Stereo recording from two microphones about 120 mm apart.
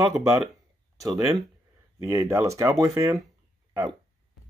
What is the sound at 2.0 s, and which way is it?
Speech, 25° right (ahead or behind).